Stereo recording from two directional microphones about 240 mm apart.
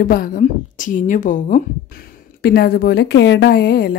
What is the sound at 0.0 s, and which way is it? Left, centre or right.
A woman's voice, left.